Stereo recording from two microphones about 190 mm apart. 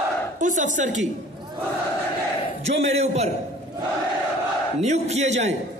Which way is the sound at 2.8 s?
35° right (ahead or behind).